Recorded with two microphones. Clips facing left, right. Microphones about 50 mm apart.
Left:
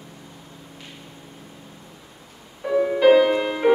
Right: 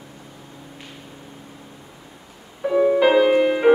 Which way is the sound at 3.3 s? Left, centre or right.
Centre.